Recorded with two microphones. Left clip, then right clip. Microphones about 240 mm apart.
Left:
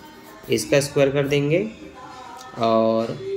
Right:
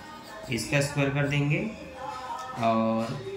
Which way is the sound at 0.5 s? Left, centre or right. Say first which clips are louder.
Left 9 dB; left.